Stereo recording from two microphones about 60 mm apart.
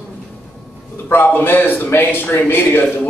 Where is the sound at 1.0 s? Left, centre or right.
Left.